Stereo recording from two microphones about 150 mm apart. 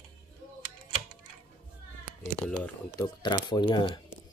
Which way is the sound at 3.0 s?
30° left (ahead or behind).